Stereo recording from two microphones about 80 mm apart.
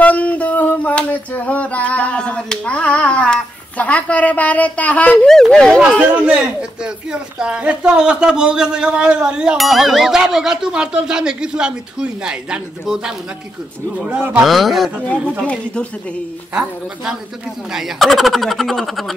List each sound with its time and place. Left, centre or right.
0.0 s a sound: centre
5.8 s speech: centre
14.0 s speech: centre
14.4 s speech: centre
15.2 s speech: centre
17.7 s speech: centre